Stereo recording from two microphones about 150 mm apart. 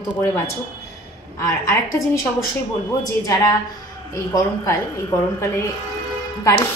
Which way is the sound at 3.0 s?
25° left (ahead or behind).